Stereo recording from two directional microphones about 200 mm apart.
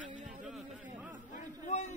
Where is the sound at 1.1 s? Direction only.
40° left (ahead or behind).